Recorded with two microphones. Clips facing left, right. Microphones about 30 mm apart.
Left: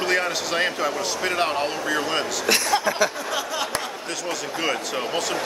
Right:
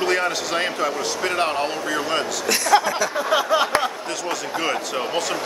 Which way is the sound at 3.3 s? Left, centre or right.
Right.